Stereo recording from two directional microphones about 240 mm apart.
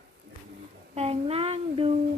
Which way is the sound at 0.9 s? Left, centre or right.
Right.